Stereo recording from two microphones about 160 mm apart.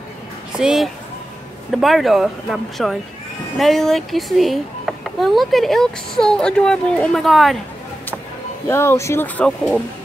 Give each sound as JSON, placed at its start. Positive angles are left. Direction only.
{"t": 0.6, "sound": "a child's voice", "side_deg": -5}
{"t": 8.6, "sound": "speech", "side_deg": 15}